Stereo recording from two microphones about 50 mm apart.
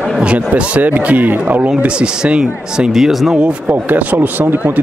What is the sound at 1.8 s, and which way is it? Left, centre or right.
Speech, right.